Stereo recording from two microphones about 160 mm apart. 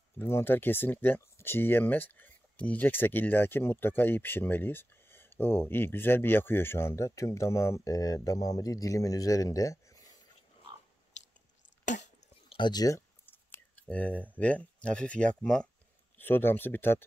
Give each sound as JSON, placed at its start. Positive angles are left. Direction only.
{"t": 0.2, "sound": "speech", "side_deg": 15}
{"t": 11.8, "sound": "cough", "side_deg": 50}
{"t": 12.4, "sound": "a sound", "side_deg": 30}
{"t": 14.4, "sound": "speech", "side_deg": 10}